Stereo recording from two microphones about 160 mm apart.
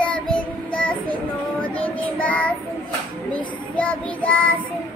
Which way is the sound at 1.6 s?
10° left (ahead or behind).